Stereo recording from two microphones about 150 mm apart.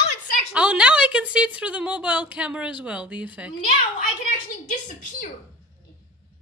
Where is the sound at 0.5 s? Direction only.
5° right (ahead or behind).